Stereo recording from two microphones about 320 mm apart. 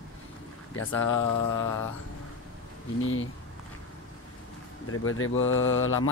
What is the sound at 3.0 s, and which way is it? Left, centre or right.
Speech, left.